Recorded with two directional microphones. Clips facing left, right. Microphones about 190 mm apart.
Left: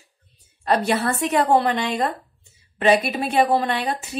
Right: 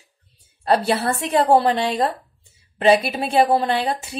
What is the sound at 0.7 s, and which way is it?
A woman's voice, 30° right (ahead or behind).